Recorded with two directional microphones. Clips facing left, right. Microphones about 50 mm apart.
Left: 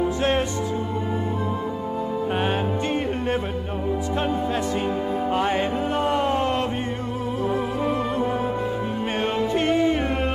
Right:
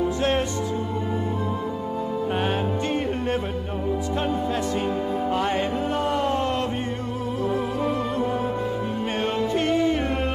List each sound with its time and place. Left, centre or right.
0.2 s music: left
2.3 s music: left
5.3 s music: left
6.0 s a sound: left
7.4 s music: left